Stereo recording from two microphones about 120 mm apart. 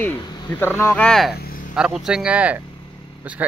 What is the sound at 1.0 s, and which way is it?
A man's voice, centre (ahead or behind).